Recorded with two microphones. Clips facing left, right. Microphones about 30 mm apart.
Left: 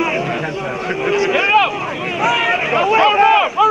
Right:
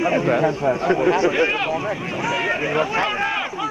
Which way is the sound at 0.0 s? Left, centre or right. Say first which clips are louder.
Left 1 dB; left.